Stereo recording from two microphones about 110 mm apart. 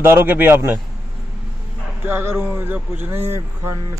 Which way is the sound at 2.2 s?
20° right (ahead or behind).